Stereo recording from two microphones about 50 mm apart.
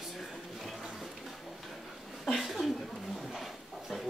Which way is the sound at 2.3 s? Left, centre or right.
Centre.